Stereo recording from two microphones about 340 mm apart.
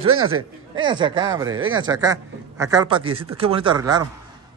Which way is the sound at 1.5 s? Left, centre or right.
Right.